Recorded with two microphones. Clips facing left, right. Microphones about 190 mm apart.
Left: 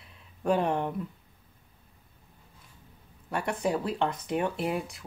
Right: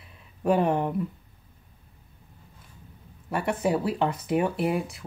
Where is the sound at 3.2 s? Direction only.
5° right (ahead or behind).